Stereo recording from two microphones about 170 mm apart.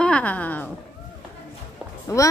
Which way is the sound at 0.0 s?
10° left (ahead or behind).